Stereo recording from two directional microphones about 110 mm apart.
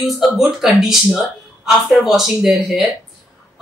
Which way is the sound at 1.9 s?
Centre (ahead or behind).